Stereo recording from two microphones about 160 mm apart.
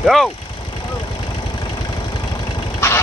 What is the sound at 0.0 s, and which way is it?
Speech, centre (ahead or behind).